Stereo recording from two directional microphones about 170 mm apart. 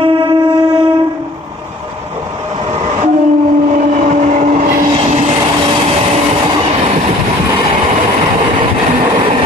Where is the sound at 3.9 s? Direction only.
40° right (ahead or behind).